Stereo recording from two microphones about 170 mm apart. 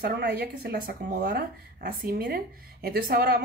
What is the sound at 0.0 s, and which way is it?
Speech, 75° right (ahead or behind).